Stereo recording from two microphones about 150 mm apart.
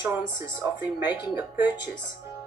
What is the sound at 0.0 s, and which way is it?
Speech, 15° right (ahead or behind).